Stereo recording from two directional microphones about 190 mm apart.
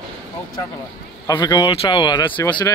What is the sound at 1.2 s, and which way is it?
Speech, 20° left (ahead or behind).